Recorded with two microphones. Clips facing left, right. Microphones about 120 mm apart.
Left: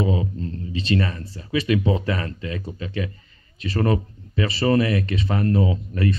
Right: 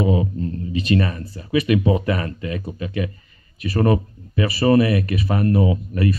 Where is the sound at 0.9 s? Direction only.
20° right (ahead or behind).